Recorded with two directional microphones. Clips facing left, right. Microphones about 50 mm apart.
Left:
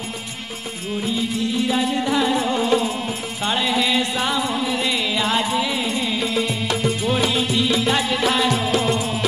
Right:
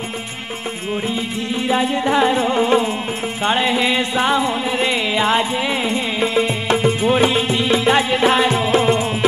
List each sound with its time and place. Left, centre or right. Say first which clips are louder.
1.7 s music: right 7 dB; right